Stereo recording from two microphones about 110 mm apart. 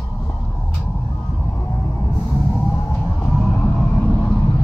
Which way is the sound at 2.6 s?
10° left (ahead or behind).